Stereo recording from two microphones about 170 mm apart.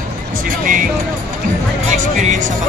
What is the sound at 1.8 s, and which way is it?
Speech, 50° right (ahead or behind).